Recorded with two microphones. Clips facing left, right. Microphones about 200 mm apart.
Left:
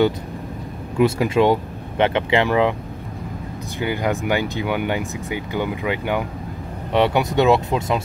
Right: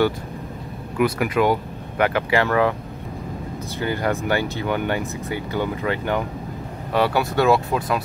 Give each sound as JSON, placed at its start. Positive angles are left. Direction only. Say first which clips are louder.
{"t": 0.9, "sound": "speech", "louder": "left 3 dB", "side_deg": 25}
{"t": 3.8, "sound": "speech", "louder": "left 1 dB", "side_deg": 15}